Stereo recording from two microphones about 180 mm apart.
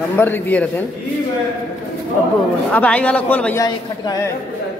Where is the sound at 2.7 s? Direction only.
10° left (ahead or behind).